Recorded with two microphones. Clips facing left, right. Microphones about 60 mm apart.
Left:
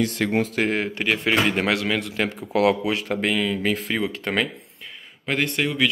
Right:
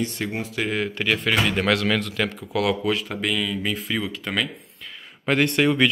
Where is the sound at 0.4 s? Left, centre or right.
Left.